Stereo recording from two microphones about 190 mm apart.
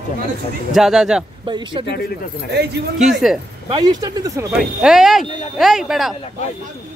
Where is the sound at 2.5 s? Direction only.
60° right (ahead or behind).